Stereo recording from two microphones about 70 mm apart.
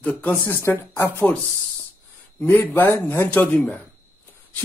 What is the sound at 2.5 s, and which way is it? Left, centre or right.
Speech, left.